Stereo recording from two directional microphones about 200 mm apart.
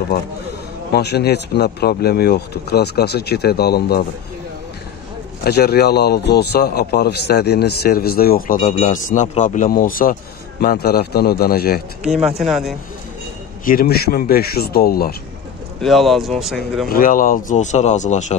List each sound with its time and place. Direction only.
0.9 s speech: 55° left (ahead or behind)
5.4 s speech: 50° left (ahead or behind)
12.4 s speech: centre (ahead or behind)
13.7 s speech: 50° left (ahead or behind)
15.8 s speech: centre (ahead or behind)
16.9 s speech: 45° left (ahead or behind)